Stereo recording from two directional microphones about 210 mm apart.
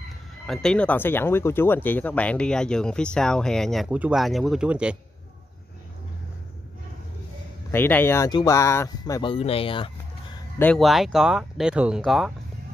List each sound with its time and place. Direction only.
0.5 s speech: 5° left (ahead or behind)
7.7 s speech: 10° left (ahead or behind); by 9.8 s 25° left (ahead or behind)
10.6 s speech: 5° left (ahead or behind)